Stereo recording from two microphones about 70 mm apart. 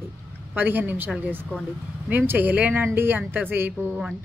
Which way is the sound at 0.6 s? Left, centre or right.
Right.